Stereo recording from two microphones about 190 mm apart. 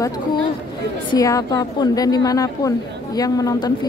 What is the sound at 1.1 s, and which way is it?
A woman's voice, 20° left (ahead or behind).